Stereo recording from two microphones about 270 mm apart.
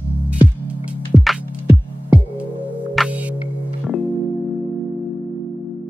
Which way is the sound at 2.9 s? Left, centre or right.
Centre.